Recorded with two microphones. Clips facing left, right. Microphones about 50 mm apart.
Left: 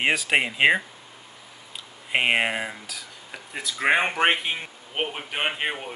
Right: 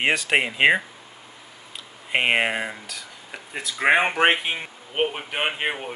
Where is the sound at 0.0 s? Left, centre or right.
Centre.